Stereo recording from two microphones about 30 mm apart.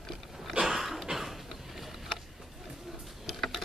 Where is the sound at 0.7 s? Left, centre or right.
Centre.